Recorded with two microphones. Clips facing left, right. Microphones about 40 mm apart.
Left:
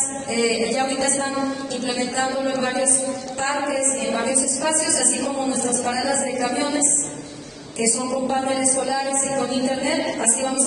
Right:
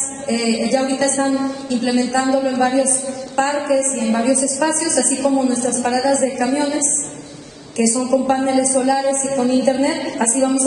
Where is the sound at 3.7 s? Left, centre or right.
Right.